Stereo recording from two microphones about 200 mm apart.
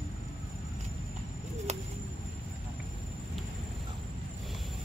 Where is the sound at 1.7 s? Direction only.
35° right (ahead or behind).